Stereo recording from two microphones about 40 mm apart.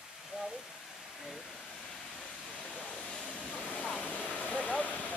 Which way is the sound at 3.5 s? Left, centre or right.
Left.